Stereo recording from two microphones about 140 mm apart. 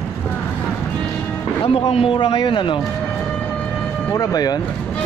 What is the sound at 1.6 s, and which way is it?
Speech, 45° left (ahead or behind).